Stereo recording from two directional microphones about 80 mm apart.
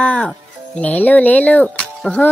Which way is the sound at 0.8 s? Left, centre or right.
Left.